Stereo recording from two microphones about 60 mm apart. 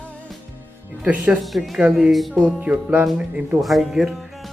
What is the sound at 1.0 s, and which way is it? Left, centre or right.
Speech, right.